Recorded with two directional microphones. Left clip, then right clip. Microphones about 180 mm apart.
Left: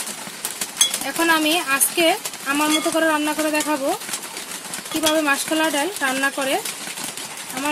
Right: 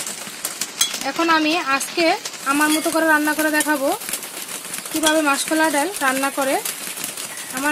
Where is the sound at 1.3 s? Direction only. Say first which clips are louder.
Even; 15° right (ahead or behind).